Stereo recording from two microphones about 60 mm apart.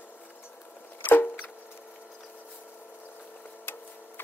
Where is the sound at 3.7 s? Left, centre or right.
Left.